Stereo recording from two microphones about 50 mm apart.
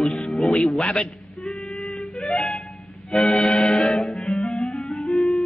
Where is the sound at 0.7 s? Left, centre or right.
Centre.